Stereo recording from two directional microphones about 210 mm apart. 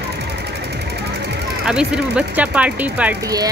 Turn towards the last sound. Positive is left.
turn(degrees=-5)  # may be behind; listen again after turning